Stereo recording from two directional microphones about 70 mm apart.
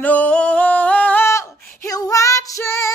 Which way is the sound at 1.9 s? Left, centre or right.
Left.